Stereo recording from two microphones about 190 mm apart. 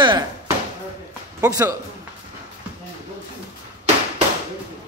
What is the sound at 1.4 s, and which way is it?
Speech, 15° right (ahead or behind).